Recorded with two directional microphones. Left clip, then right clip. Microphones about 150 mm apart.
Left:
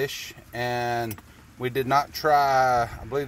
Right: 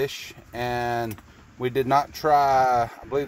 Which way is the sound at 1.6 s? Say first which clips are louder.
Right 1 dB; 20° right (ahead or behind).